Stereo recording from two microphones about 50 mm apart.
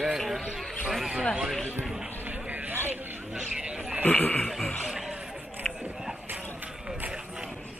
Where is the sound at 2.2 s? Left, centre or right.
Right.